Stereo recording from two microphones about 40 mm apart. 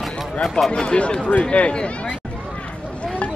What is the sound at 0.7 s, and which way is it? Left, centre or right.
Speech, left.